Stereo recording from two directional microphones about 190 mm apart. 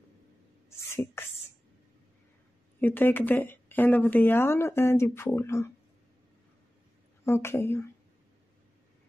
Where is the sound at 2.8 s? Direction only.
10° left (ahead or behind).